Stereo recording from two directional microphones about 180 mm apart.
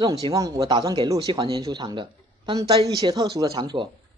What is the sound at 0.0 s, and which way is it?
Speech, 20° right (ahead or behind).